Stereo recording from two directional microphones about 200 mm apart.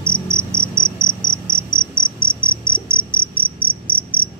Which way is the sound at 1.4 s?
20° left (ahead or behind).